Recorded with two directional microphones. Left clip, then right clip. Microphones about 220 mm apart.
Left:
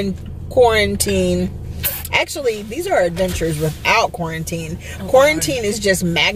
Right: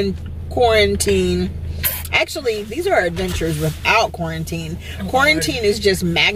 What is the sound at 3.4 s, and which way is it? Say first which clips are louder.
Speech: left 1 dB; 15° left (ahead or behind).